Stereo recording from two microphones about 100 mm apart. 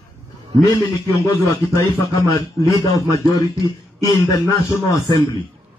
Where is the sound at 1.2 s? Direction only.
35° left (ahead or behind).